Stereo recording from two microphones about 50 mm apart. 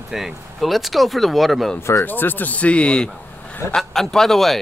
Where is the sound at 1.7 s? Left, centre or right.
Left.